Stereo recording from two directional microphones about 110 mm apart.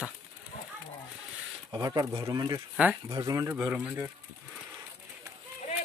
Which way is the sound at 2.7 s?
10° right (ahead or behind).